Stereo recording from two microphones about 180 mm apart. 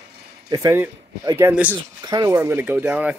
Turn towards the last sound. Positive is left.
turn(degrees=-5)  # may be behind; listen again after turning